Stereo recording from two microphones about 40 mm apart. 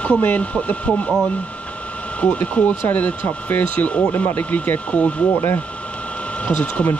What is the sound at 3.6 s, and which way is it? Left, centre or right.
Speech, left.